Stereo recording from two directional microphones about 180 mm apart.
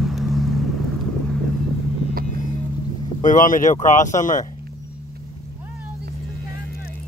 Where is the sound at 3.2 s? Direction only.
45° left (ahead or behind).